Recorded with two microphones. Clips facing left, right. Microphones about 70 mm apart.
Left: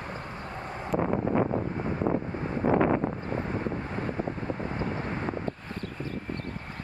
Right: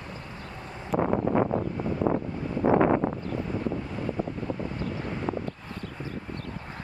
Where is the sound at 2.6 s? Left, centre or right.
Right.